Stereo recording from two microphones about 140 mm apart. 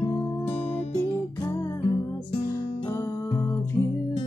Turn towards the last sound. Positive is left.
turn(degrees=20)  # may be behind; listen again after turning